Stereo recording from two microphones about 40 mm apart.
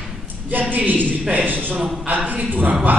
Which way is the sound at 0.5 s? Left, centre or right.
Right.